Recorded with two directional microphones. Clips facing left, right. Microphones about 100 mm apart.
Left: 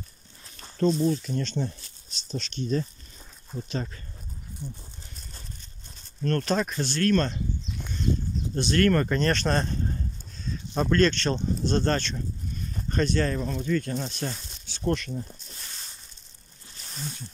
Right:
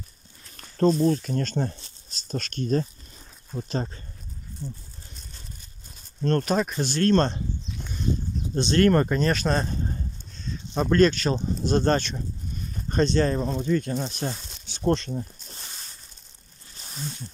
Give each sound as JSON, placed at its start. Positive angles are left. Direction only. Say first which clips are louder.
{"t": 0.6, "sound": "speech", "louder": "right 3 dB", "side_deg": -45}
{"t": 4.6, "sound": "speech", "louder": "right 3 dB", "side_deg": 15}
{"t": 6.4, "sound": "speech", "louder": "right 2 dB", "side_deg": -10}
{"t": 7.0, "sound": "speech", "louder": "right 3 dB", "side_deg": -30}
{"t": 8.5, "sound": "speech", "louder": "right 3 dB", "side_deg": -25}
{"t": 9.1, "sound": "speech", "louder": "right 1 dB", "side_deg": -5}
{"t": 10.3, "sound": "a sound", "louder": "even", "side_deg": 5}
{"t": 10.9, "sound": "speech", "louder": "right 3 dB", "side_deg": -10}
{"t": 14.9, "sound": "speech", "louder": "right 4 dB", "side_deg": -30}